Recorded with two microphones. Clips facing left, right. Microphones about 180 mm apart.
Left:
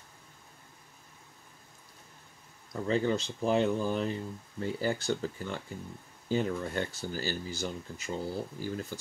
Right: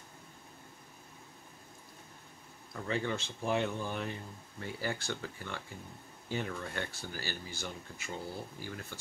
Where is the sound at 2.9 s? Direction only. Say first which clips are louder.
Left 6 dB; 30° left (ahead or behind).